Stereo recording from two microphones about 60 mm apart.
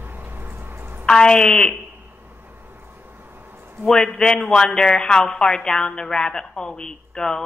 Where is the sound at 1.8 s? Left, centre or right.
Right.